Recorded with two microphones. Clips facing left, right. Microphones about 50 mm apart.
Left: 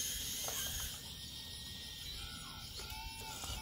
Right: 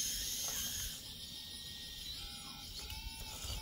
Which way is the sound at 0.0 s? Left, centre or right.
Centre.